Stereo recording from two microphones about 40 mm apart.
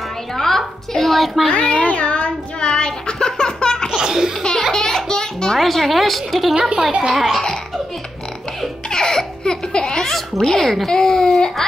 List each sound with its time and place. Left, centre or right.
0.4 s a sound: centre
1.5 s child singing: left
3.9 s laughter: centre
4.4 s music: centre
4.7 s a sound: centre
5.6 s a woman's voice: centre
6.9 s speech: centre
7.2 s a woman's voice: centre
8.9 s baby laughter: centre
10.0 s a child's voice: centre